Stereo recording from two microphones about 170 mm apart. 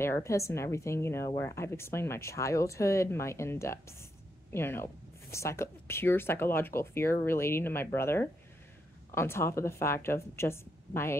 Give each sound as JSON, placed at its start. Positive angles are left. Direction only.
{"t": 0.0, "sound": "a woman's voice", "side_deg": 15}